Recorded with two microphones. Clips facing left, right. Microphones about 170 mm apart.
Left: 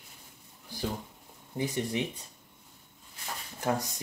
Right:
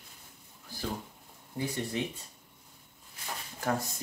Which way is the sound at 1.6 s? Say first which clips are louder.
Left 2 dB; 15° left (ahead or behind).